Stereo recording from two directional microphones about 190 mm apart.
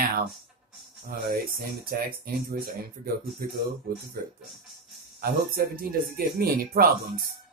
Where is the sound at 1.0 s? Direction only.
50° right (ahead or behind).